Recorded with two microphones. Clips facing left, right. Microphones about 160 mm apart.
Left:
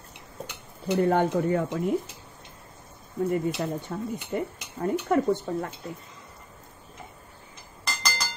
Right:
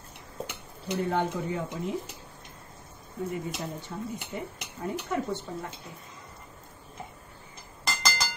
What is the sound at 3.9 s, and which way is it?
Speech, 60° left (ahead or behind).